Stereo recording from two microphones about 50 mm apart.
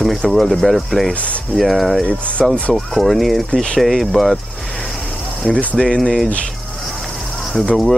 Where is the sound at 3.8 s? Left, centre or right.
Centre.